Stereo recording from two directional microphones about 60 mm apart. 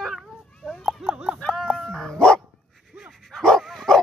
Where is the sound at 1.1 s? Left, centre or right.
Centre.